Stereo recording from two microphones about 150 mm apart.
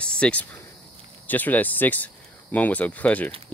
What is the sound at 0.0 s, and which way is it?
Speech, 5° left (ahead or behind).